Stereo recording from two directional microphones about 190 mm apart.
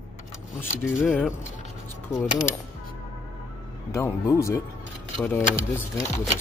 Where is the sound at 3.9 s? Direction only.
15° left (ahead or behind).